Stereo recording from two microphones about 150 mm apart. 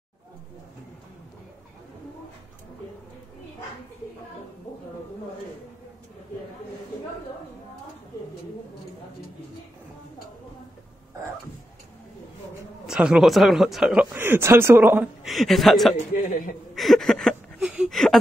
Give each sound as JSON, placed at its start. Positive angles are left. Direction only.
{"t": 12.8, "sound": "speech", "side_deg": -5}
{"t": 15.2, "sound": "a woman's voice", "side_deg": 0}
{"t": 16.3, "sound": "speech", "side_deg": 65}
{"t": 16.7, "sound": "a sound", "side_deg": 0}